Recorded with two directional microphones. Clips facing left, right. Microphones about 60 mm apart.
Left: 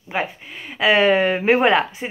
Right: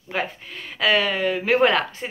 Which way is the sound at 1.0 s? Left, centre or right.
Left.